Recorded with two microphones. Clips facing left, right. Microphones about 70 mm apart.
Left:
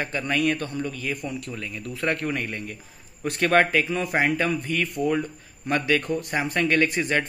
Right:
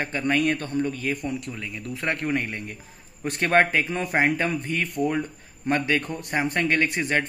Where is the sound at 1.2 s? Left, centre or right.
Centre.